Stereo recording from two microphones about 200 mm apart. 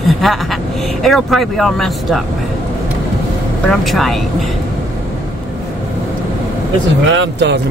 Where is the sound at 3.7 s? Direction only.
Centre (ahead or behind).